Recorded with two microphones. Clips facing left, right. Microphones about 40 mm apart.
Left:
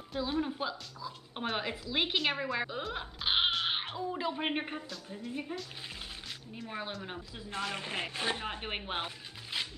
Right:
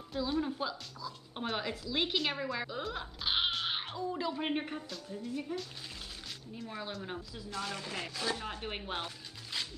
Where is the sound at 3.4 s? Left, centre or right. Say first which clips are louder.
Left 3 dB; centre.